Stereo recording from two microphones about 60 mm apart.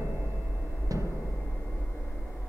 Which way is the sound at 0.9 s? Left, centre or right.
Right.